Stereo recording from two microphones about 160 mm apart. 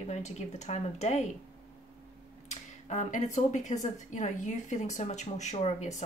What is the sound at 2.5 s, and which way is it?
Speech, 50° left (ahead or behind).